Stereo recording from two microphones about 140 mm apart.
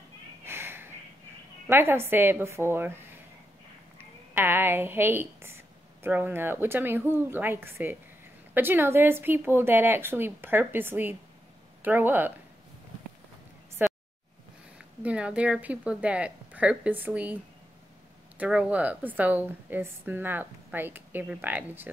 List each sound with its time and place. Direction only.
0.5 s snort: 15° right (ahead or behind)
1.7 s a woman's voice: 15° right (ahead or behind)
4.0 s a woman's voice: 15° right (ahead or behind)
13.8 s a sound: 15° right (ahead or behind)
15.0 s a woman's voice: 10° right (ahead or behind)
18.4 s a woman's voice: 10° right (ahead or behind)